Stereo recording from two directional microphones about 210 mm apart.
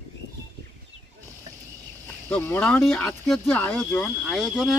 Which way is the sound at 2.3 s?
10° left (ahead or behind).